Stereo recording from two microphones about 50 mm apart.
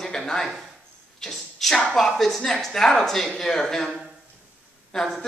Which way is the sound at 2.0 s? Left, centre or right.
Centre.